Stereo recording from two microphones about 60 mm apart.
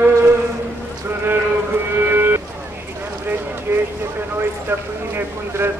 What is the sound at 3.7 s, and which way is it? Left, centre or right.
Boat, right.